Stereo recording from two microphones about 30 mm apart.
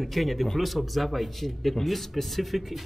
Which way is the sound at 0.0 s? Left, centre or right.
Centre.